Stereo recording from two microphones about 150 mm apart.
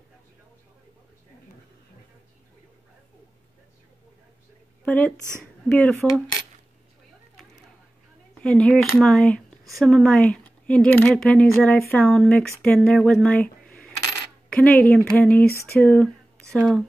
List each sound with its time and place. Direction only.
4.8 s speech: 10° left (ahead or behind)
8.4 s speech: 5° left (ahead or behind)
15.8 s a sound: 5° left (ahead or behind)
16.5 s speech: centre (ahead or behind)